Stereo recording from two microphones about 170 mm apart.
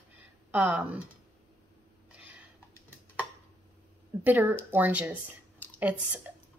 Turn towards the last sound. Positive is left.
turn(degrees=-10)  # may be behind; listen again after turning